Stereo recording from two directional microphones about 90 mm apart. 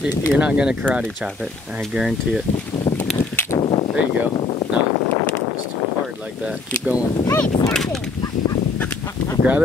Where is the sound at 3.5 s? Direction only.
55° left (ahead or behind).